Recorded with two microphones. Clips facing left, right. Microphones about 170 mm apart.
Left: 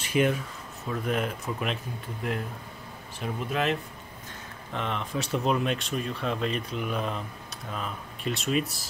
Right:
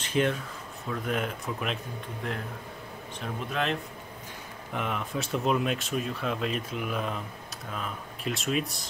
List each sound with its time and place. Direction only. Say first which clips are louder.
0.0 s speech: left 2 dB; 10° left (ahead or behind)
3.2 s speech: left 2 dB; 5° left (ahead or behind)
4.7 s speech: left 1 dB; 5° right (ahead or behind)